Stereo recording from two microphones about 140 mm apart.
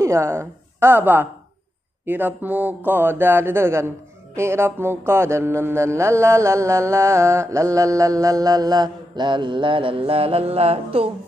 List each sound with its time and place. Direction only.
0.0 s a woman's voice: 20° right (ahead or behind)
4.4 s mantra: 20° right (ahead or behind); by 11.1 s 45° right (ahead or behind)